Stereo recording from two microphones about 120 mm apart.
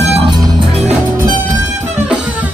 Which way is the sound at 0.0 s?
60° right (ahead or behind).